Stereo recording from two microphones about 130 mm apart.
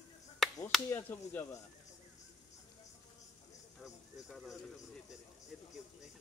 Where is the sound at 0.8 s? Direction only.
15° left (ahead or behind).